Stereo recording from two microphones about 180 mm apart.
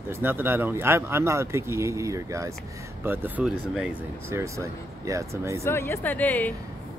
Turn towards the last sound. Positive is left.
turn(degrees=10)  # may be behind; listen again after turning